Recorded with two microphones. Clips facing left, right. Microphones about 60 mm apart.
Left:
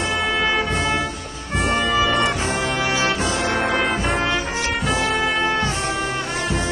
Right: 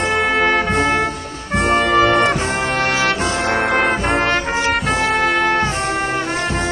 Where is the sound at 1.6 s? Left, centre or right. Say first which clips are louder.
Right 5 dB; right.